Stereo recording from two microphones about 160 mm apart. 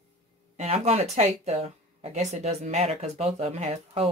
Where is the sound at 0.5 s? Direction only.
40° right (ahead or behind).